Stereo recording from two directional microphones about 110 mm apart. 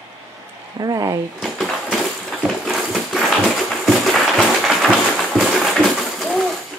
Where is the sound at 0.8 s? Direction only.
35° right (ahead or behind).